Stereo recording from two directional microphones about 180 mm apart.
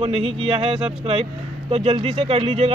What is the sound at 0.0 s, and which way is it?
Speech, 30° right (ahead or behind).